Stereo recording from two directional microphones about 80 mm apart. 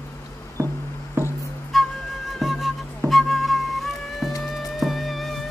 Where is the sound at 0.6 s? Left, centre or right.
Right.